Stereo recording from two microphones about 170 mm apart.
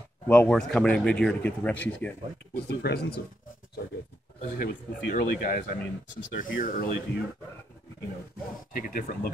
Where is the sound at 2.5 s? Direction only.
70° left (ahead or behind).